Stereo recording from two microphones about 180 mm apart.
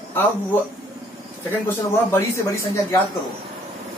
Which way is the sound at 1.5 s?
15° left (ahead or behind).